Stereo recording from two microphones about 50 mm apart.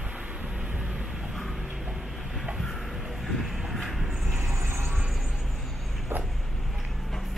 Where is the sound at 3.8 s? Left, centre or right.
Centre.